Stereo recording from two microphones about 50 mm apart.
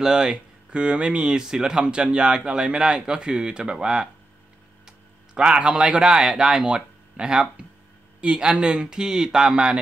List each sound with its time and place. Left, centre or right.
0.0 s speech: centre